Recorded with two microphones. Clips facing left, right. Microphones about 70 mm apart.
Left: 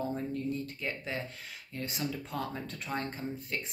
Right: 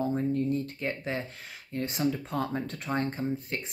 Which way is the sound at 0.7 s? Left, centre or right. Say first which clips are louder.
Right 4 dB; right.